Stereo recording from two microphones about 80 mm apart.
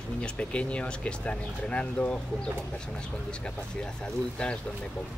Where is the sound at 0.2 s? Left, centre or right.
Centre.